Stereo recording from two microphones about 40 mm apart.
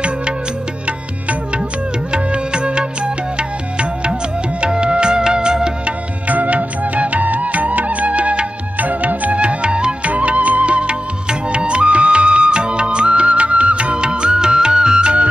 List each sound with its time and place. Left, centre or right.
2.1 s music: right
5.9 s music: right
10.0 s music: right